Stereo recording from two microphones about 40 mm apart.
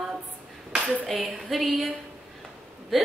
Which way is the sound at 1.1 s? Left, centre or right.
Centre.